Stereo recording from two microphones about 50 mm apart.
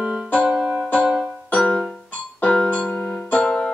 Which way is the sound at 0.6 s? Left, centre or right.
Centre.